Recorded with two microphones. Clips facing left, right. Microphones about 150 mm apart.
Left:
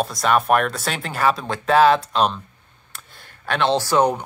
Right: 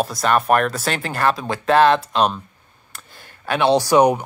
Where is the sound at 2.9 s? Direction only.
Centre (ahead or behind).